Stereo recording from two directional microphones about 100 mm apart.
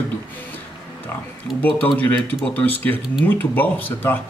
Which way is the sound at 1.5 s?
15° left (ahead or behind).